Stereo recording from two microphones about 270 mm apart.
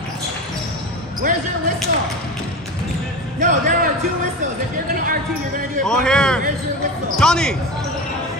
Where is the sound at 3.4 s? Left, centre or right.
Right.